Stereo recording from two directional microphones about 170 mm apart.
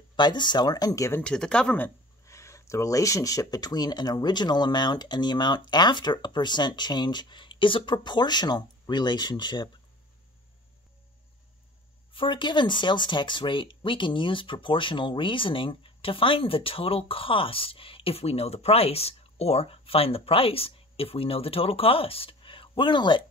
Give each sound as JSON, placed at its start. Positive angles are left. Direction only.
{"t": 0.1, "sound": "speech", "side_deg": 25}
{"t": 1.2, "sound": "speech", "side_deg": 5}
{"t": 2.2, "sound": "speech", "side_deg": 15}
{"t": 12.1, "sound": "speech", "side_deg": 30}